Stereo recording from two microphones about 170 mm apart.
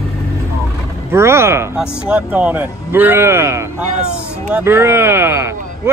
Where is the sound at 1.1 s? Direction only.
15° right (ahead or behind).